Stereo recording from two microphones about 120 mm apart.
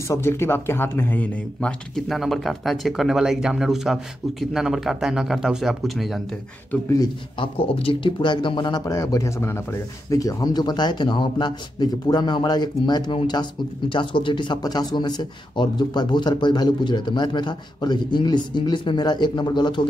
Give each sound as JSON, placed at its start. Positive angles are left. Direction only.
{"t": 0.1, "sound": "speech", "side_deg": 20}
{"t": 2.0, "sound": "speech", "side_deg": 0}
{"t": 7.3, "sound": "speech", "side_deg": 50}